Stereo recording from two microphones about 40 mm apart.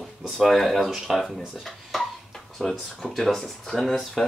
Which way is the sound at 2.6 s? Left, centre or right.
Centre.